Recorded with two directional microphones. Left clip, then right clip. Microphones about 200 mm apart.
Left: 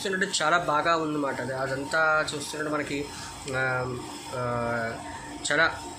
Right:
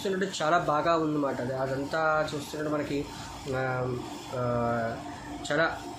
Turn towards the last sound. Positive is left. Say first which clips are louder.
# left 3 dB
turn(degrees=-15)  # may be behind; listen again after turning